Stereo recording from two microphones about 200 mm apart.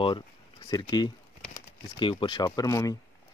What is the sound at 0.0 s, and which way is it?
Speech, 20° left (ahead or behind).